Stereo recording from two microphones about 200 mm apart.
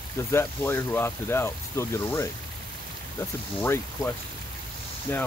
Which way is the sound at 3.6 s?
10° left (ahead or behind).